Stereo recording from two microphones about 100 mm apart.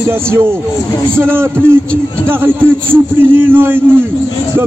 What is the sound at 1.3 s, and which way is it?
Speech, 25° right (ahead or behind).